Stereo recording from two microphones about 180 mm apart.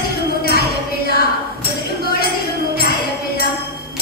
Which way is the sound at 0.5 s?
60° left (ahead or behind).